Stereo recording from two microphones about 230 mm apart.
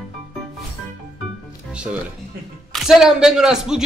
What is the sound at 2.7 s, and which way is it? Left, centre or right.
Speech, centre.